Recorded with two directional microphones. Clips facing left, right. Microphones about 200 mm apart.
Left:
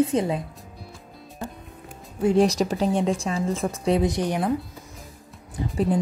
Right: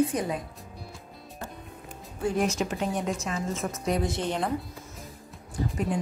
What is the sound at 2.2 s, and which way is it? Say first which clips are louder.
Speech: left 8 dB; 25° left (ahead or behind).